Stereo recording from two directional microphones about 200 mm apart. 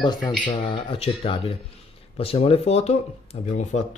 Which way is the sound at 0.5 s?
25° left (ahead or behind).